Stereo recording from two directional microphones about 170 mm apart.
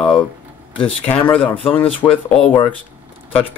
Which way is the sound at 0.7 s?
10° left (ahead or behind).